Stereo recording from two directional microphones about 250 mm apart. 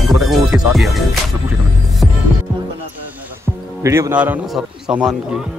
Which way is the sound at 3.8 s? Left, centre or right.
Centre.